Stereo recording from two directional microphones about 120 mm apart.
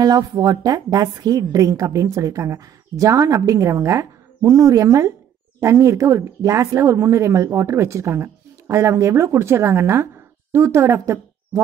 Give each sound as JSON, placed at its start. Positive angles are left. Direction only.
{"t": 0.0, "sound": "a woman's voice", "side_deg": -30}